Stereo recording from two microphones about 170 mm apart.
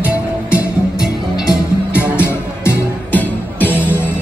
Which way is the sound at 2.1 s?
10° left (ahead or behind).